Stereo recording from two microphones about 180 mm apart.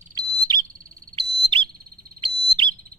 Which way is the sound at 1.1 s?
30° right (ahead or behind).